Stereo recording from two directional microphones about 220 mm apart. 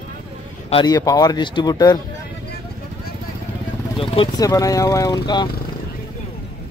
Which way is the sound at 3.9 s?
25° left (ahead or behind).